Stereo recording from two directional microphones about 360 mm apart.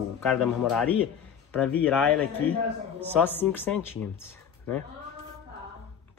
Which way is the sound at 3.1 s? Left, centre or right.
Centre.